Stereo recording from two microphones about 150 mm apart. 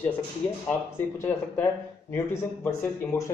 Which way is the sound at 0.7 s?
15° left (ahead or behind).